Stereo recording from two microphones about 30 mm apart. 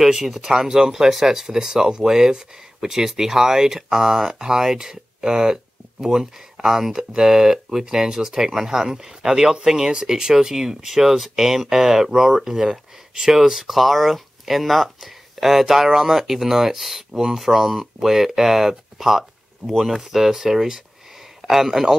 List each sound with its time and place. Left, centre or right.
0.0 s speech: centre
13.7 s speech: centre
15.4 s a man's voice: centre